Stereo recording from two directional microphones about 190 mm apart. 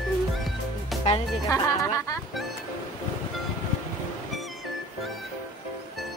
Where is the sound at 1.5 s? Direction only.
15° left (ahead or behind).